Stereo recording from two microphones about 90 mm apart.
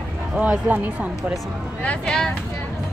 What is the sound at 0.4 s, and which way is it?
Speech, 20° right (ahead or behind).